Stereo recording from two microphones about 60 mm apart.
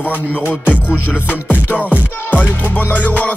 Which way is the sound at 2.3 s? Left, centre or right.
Left.